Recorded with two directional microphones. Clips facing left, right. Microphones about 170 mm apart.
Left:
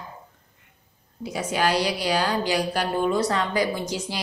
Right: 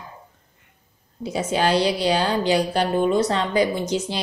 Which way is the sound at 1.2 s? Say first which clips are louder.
Right 3 dB; 25° right (ahead or behind).